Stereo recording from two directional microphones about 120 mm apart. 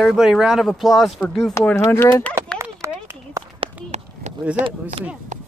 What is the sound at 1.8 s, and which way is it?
Speech, 25° left (ahead or behind).